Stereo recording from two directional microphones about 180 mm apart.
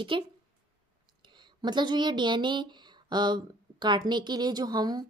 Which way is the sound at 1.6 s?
25° right (ahead or behind).